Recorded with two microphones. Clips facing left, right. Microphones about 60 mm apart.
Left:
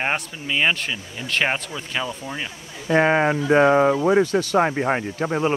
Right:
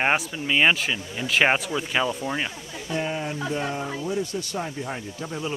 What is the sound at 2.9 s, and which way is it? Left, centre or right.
Speech, left.